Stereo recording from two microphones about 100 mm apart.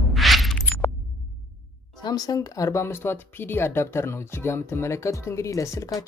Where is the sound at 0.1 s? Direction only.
Centre (ahead or behind).